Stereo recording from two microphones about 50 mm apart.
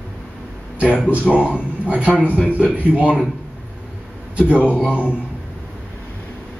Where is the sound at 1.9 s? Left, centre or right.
Right.